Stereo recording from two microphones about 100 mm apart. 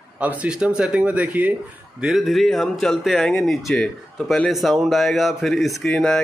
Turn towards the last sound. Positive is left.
turn(degrees=5)  # may be behind; listen again after turning